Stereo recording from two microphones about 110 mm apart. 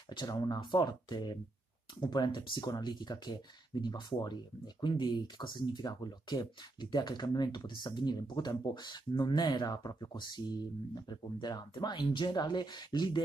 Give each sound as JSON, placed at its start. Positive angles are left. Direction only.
{"t": 0.1, "sound": "speech", "side_deg": 45}